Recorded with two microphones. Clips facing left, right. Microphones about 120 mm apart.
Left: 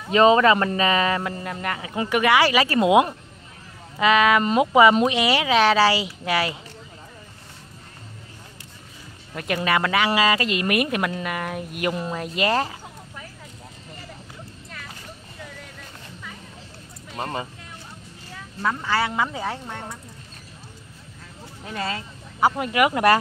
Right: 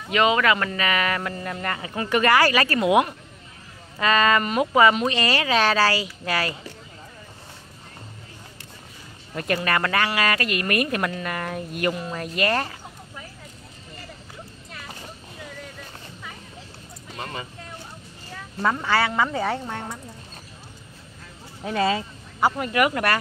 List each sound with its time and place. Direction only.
0.1 s speech: 30° left (ahead or behind)
4.0 s speech: 10° left (ahead or behind)
9.3 s speech: centre (ahead or behind)
10.2 s speech: 20° left (ahead or behind)
17.2 s speech: 35° left (ahead or behind)
18.9 s speech: 10° left (ahead or behind)
21.6 s speech: 10° right (ahead or behind)
22.4 s speech: 10° left (ahead or behind)